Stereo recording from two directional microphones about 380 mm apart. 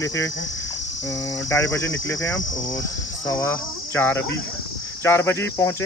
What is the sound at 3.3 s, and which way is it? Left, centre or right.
Cricket, centre.